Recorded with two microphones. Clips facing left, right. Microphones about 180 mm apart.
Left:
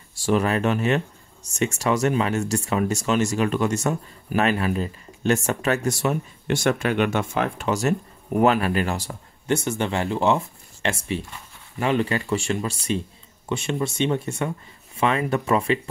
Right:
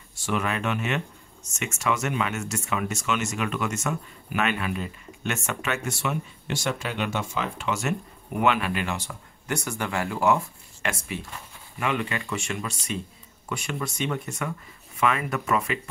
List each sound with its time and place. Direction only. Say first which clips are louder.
0.1 s speech: left 7 dB; 35° left (ahead or behind)
6.4 s speech: left 9 dB; 55° left (ahead or behind)
7.6 s speech: left 5 dB; 40° left (ahead or behind)